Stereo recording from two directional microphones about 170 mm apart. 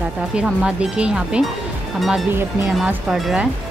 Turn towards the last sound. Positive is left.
turn(degrees=-5)  # may be behind; listen again after turning